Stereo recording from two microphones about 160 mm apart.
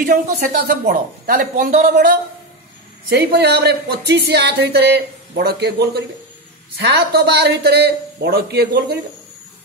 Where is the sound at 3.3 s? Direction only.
90° right.